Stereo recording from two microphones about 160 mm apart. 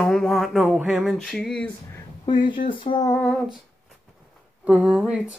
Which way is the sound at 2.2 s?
30° left (ahead or behind).